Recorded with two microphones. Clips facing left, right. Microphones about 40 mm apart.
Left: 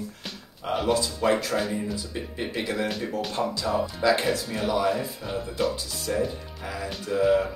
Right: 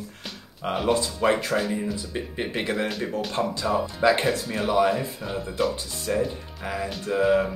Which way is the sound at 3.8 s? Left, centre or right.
Right.